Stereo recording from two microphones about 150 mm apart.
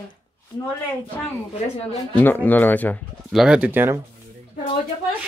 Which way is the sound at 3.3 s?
5° right (ahead or behind).